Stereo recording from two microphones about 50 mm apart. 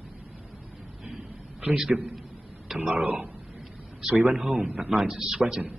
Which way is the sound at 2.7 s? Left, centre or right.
Right.